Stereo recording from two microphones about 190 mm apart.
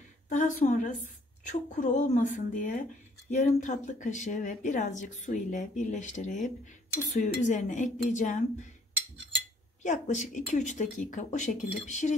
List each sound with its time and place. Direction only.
0.3 s a woman's voice: 40° left (ahead or behind)
9.8 s a woman's voice: 40° left (ahead or behind)